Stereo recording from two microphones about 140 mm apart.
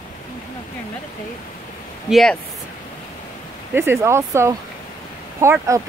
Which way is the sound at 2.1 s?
Centre (ahead or behind).